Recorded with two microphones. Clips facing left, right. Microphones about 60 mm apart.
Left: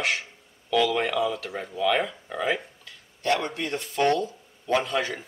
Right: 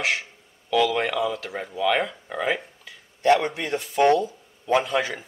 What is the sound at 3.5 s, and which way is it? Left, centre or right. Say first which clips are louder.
Speech: right 2 dB; centre.